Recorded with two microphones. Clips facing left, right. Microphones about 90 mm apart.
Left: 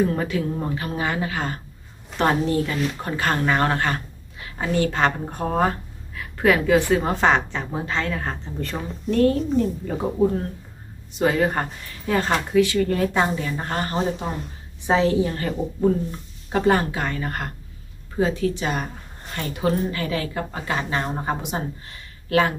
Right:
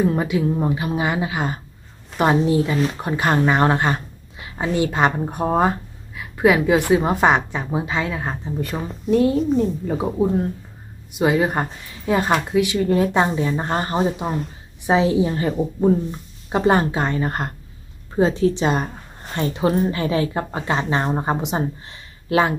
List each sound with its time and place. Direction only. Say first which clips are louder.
0.0 s a woman's voice: right 3 dB; 15° right (ahead or behind)
14.3 s a woman's voice: right 4 dB; 15° right (ahead or behind)